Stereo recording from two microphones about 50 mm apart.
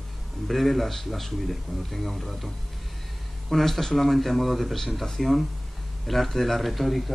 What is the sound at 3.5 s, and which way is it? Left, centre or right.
Speech, centre.